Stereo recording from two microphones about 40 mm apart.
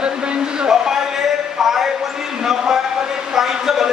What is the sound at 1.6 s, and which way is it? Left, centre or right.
A man's voice, centre.